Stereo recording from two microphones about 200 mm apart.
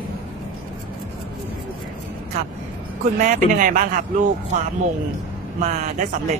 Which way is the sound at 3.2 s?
40° right (ahead or behind).